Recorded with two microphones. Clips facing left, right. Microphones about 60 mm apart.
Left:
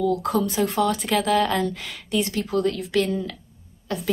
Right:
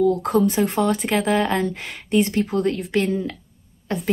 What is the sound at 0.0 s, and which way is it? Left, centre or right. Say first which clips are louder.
A woman's voice: right 4 dB; right.